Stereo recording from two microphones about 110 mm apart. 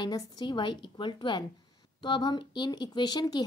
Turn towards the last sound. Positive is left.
turn(degrees=40)  # may be behind; listen again after turning